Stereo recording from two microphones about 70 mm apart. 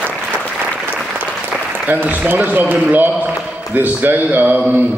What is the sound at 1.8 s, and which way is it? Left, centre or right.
Speech, right.